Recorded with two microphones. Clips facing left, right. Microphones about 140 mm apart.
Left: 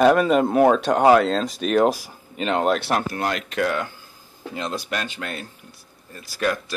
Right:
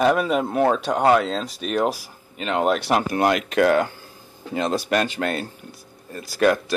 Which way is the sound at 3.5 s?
55° right (ahead or behind).